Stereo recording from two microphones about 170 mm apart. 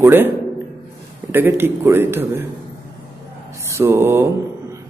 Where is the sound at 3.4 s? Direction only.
15° right (ahead or behind).